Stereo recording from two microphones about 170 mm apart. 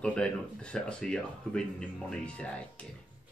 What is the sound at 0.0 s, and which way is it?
Speech, 5° left (ahead or behind).